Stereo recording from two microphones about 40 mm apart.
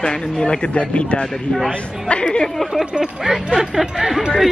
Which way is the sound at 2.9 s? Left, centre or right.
Centre.